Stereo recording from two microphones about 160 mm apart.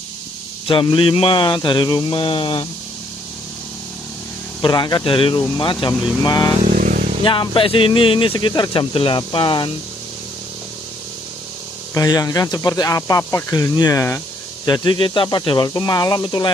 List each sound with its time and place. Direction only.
0.7 s speech: 30° left (ahead or behind)
4.6 s speech: 30° left (ahead or behind)
6.6 s a sound: 55° right (ahead or behind)
7.2 s speech: 30° left (ahead or behind)
11.9 s speech: 20° left (ahead or behind)